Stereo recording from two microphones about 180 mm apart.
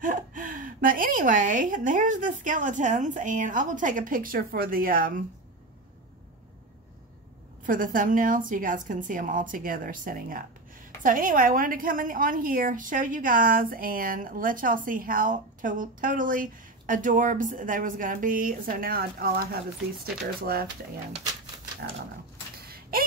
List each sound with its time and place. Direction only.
0.0 s a woman's voice: 45° right (ahead or behind)
7.6 s a woman's voice: 50° right (ahead or behind)
22.7 s a sound: 55° right (ahead or behind)